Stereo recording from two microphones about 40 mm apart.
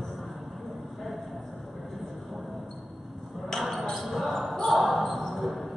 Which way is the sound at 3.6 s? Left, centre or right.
Centre.